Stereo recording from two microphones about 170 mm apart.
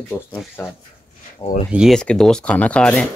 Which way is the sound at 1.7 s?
Centre (ahead or behind).